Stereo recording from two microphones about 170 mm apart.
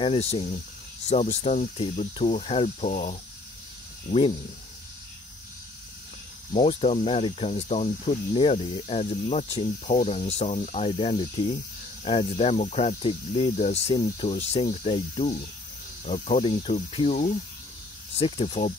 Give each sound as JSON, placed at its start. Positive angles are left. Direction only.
{"t": 0.0, "sound": "speech", "side_deg": 35}
{"t": 6.5, "sound": "speech", "side_deg": 35}
{"t": 10.9, "sound": "speech", "side_deg": 30}